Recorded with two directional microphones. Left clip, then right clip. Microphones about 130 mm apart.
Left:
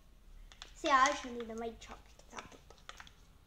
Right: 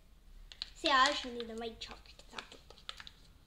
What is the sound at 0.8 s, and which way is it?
A child's voice, 40° right (ahead or behind).